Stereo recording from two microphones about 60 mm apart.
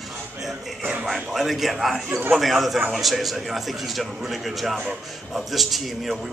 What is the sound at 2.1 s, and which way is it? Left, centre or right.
Speech, right.